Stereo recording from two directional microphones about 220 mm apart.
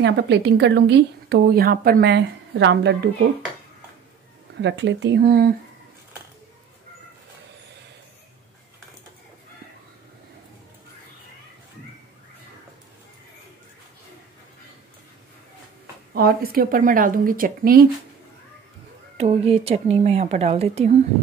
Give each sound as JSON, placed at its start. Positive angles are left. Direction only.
{"t": 0.0, "sound": "a woman's voice", "side_deg": -50}
{"t": 4.6, "sound": "a woman's voice", "side_deg": -55}
{"t": 16.1, "sound": "speech", "side_deg": -45}
{"t": 19.1, "sound": "speech", "side_deg": -30}